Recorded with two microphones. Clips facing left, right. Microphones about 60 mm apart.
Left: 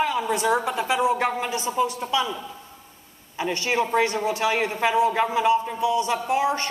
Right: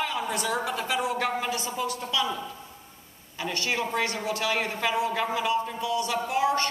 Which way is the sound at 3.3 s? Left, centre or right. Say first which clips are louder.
Left 5 dB; left.